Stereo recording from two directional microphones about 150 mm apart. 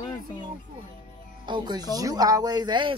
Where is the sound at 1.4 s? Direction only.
30° right (ahead or behind).